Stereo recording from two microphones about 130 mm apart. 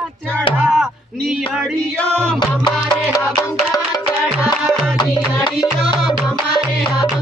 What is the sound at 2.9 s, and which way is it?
Music, 30° left (ahead or behind).